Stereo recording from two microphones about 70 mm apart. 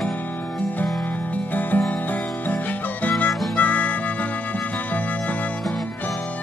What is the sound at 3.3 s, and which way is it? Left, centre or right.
Harmonica, centre.